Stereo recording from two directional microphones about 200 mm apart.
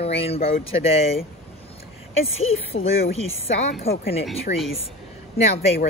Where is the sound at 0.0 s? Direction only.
30° left (ahead or behind).